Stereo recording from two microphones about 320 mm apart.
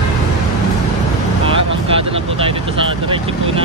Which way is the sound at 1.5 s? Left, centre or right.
Centre.